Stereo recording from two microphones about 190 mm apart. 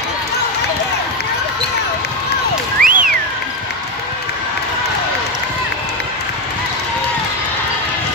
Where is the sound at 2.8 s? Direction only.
45° right (ahead or behind).